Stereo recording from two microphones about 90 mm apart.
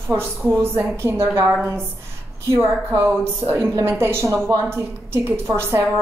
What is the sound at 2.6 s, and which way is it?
A woman's voice, 25° right (ahead or behind).